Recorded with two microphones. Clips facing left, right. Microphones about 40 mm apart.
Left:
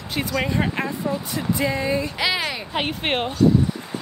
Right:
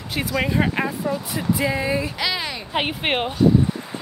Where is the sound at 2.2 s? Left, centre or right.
Centre.